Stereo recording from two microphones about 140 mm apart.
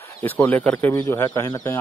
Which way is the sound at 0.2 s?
15° left (ahead or behind).